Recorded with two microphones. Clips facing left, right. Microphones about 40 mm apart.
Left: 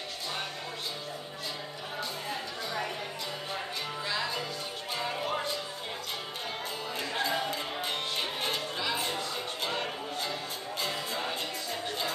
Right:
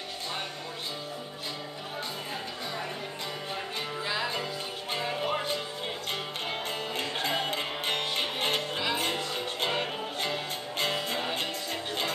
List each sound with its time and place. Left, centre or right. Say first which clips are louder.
4.0 s music: right 2 dB; centre
7.0 s music: even; right